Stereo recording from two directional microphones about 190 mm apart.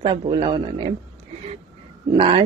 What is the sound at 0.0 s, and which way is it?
Speech, 25° right (ahead or behind).